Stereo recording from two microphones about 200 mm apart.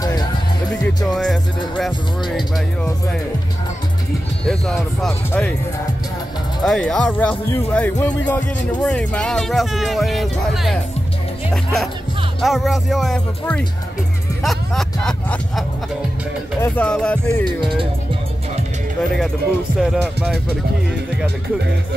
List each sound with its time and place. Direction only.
0.0 s music: 20° left (ahead or behind)
0.8 s music: centre (ahead or behind)
4.5 s music: centre (ahead or behind)
6.6 s speech: 5° left (ahead or behind)
8.8 s music: 5° left (ahead or behind)
14.4 s speech: centre (ahead or behind)
16.6 s speech: 5° left (ahead or behind)
19.8 s music: centre (ahead or behind)